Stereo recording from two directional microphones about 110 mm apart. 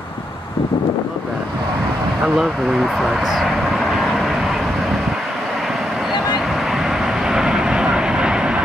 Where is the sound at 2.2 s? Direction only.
5° right (ahead or behind).